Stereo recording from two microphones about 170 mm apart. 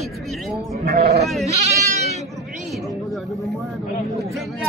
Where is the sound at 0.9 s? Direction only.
65° right (ahead or behind).